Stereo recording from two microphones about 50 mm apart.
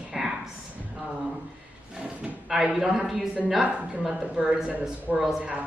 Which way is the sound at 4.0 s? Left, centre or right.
Centre.